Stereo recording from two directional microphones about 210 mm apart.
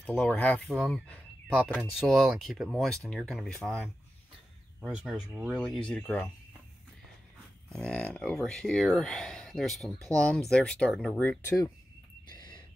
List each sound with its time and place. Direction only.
0.0 s speech: 10° left (ahead or behind)
7.7 s speech: 5° left (ahead or behind)
12.4 s a sound: 20° left (ahead or behind)